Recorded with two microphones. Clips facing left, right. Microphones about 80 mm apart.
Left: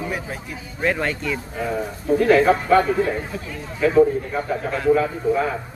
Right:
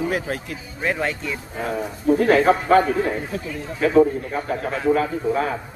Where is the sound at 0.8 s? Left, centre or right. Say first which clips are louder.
Left 2 dB; centre.